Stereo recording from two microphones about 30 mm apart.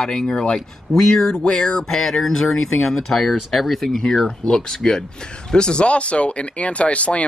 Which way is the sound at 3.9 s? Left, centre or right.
Centre.